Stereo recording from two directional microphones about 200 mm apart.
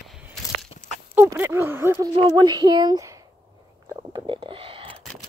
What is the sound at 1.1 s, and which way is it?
A woman's voice, 10° right (ahead or behind).